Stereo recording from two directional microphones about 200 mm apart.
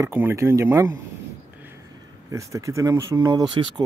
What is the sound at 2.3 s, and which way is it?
Speech, 15° right (ahead or behind).